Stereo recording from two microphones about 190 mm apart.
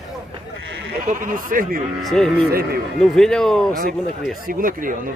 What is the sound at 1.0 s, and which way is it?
Speech, 40° right (ahead or behind).